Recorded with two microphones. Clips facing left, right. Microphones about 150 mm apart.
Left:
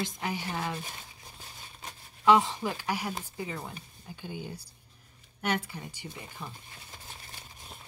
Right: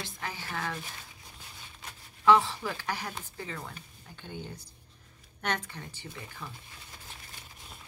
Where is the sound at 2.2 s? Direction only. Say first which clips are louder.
Left 1 dB; 20° left (ahead or behind).